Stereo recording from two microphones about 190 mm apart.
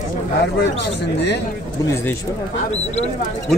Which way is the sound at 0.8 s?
65° left (ahead or behind).